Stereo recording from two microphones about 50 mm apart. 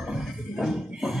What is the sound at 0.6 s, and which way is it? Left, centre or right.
Speech, centre.